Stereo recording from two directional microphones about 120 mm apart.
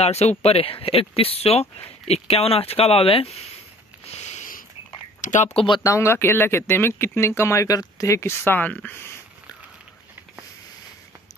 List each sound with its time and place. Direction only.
0.0 s speech: 65° left (ahead or behind)
4.2 s a sound: 65° left (ahead or behind)
5.2 s speech: 90° left
5.9 s speech: 20° left (ahead or behind)